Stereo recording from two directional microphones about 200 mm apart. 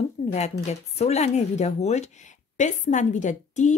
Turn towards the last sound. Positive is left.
turn(degrees=35)  # may be behind; listen again after turning